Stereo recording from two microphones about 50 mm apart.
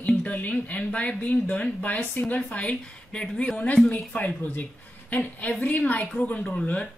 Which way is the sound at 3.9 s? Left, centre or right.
Left.